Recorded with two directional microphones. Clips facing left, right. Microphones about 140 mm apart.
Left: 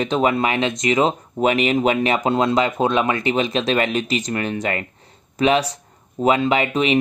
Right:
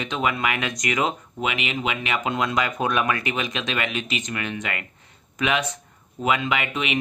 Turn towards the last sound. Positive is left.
turn(degrees=35)  # may be behind; listen again after turning